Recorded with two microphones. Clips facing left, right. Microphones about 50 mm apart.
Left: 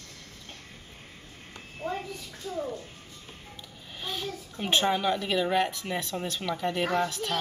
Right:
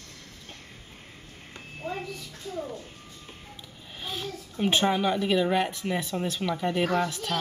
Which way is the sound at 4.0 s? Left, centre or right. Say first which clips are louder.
Even; centre.